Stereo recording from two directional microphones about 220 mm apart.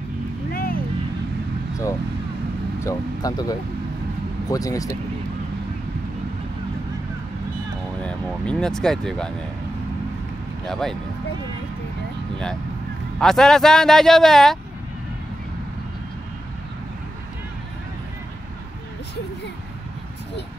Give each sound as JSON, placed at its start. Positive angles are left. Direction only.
{"t": 0.5, "sound": "vehicle", "side_deg": 40}
{"t": 2.8, "sound": "speech", "side_deg": 15}
{"t": 8.0, "sound": "speech", "side_deg": 5}
{"t": 10.7, "sound": "a man's voice", "side_deg": 0}
{"t": 13.2, "sound": "a man's voice", "side_deg": 0}